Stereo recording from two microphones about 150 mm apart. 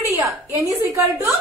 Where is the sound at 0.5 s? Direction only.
20° right (ahead or behind).